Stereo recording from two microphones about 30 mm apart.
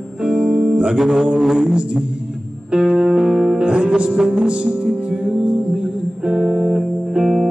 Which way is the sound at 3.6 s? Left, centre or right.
Right.